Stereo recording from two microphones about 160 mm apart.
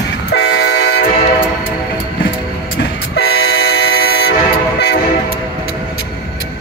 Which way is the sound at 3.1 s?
85° left.